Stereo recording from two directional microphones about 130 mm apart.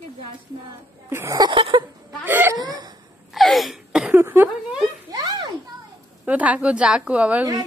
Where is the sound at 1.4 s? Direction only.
40° right (ahead or behind).